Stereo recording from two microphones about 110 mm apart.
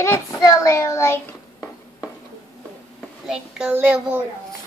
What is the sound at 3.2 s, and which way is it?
Speech, 5° right (ahead or behind).